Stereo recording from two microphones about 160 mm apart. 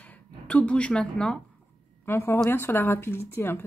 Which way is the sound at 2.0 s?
15° left (ahead or behind).